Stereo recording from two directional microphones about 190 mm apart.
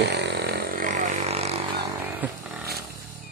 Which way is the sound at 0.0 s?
65° right (ahead or behind).